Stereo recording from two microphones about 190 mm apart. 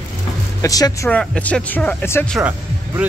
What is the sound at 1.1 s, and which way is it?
Speech, 5° left (ahead or behind).